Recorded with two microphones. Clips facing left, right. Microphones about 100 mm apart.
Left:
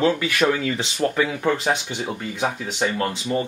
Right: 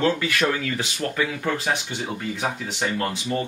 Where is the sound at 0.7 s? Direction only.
25° left (ahead or behind).